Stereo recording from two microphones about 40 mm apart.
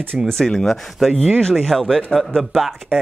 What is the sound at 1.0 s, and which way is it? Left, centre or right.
Speech, centre.